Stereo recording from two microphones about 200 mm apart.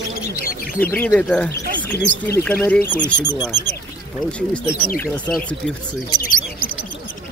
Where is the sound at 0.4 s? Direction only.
45° left (ahead or behind).